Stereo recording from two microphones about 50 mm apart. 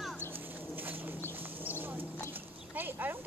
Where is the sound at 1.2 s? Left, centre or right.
Left.